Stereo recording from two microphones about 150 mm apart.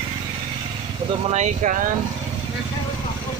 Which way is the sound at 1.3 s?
55° right (ahead or behind).